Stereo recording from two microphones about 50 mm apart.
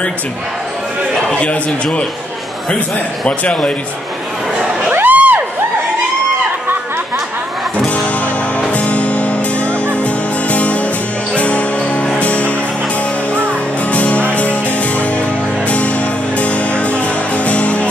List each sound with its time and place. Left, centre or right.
1.3 s a man's voice: left
3.3 s a man's voice: left
4.9 s crowd: right
8.5 s music: left
13.9 s music: left
16.3 s music: left